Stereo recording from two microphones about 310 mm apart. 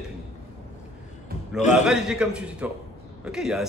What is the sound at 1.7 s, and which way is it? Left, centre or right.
A man's voice, centre.